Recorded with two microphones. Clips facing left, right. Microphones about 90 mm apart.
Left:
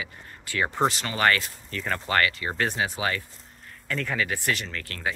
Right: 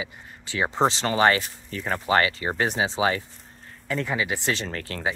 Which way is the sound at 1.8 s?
10° right (ahead or behind).